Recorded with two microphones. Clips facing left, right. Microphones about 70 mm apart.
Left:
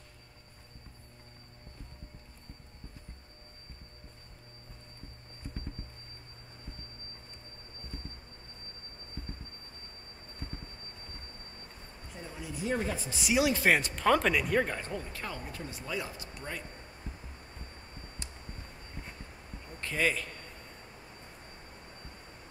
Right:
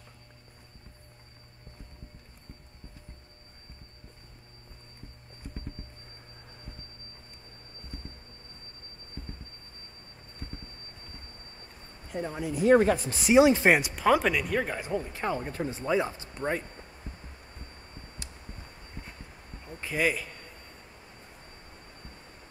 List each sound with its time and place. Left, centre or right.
12.1 s speech: right
13.2 s speech: right; by 14.8 s centre
14.8 s speech: centre
15.4 s speech: right
19.6 s a man's voice: centre